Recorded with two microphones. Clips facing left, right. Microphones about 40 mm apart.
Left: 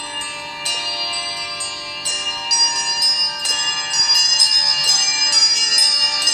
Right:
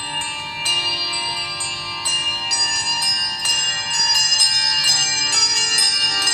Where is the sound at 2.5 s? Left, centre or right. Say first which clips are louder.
Left 1 dB; right.